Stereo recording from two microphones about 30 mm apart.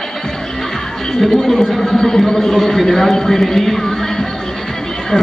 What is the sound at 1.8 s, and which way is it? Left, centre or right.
Speech, centre.